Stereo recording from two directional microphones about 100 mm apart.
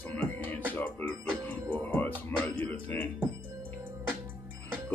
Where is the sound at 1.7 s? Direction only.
15° left (ahead or behind).